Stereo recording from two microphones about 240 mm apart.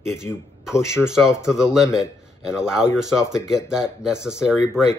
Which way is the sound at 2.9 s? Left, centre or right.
Centre.